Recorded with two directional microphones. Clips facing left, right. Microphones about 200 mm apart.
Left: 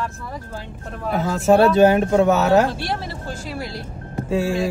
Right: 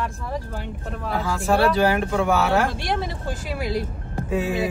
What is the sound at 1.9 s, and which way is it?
Speech, 30° left (ahead or behind).